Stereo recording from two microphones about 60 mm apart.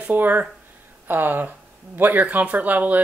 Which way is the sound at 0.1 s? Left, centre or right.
Right.